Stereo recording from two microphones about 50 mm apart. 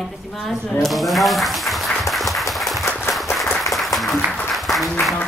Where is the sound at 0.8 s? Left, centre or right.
Centre.